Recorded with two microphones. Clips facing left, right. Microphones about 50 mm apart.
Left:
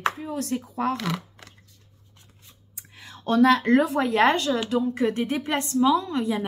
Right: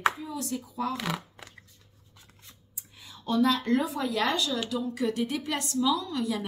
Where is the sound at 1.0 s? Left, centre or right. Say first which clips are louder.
Left 3 dB; centre.